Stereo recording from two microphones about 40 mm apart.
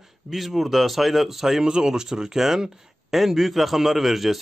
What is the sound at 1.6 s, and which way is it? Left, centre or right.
Speech, centre.